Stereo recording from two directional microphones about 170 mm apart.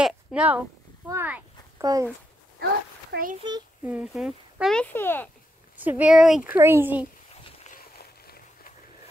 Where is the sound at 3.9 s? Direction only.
5° right (ahead or behind); by 5.2 s 10° left (ahead or behind).